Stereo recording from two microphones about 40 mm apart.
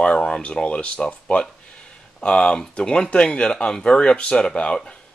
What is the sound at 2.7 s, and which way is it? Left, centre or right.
Speech, left.